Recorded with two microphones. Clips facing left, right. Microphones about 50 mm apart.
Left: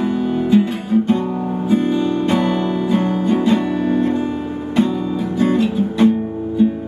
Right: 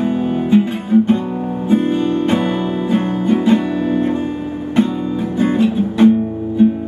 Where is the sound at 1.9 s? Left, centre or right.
Right.